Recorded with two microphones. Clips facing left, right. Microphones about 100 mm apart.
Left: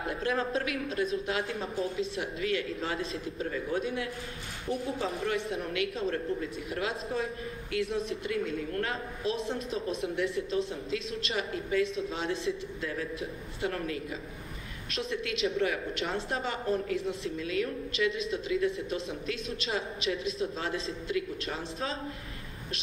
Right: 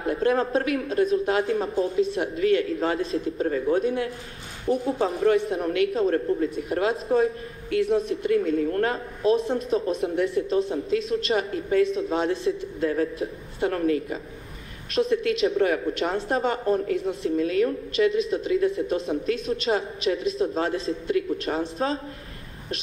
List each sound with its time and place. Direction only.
0.2 s a woman's voice: 45° right (ahead or behind)
19.7 s a woman's voice: 35° right (ahead or behind)
20.5 s a woman's voice: 50° right (ahead or behind)